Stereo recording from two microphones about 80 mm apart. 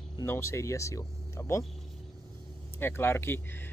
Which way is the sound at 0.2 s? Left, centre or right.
Left.